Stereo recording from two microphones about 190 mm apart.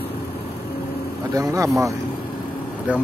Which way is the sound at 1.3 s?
15° right (ahead or behind).